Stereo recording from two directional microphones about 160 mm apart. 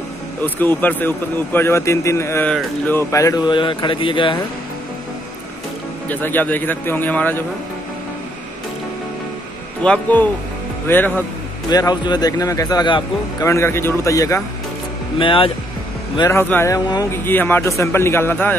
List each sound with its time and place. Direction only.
0.4 s speech: 10° left (ahead or behind); by 4.4 s 30° left (ahead or behind)
6.0 s speech: 10° left (ahead or behind)
9.8 s speech: 5° left (ahead or behind)
11.7 s speech: 25° left (ahead or behind)
13.5 s speech: 15° left (ahead or behind)
15.1 s speech: 35° left (ahead or behind)
16.3 s speech: 15° left (ahead or behind)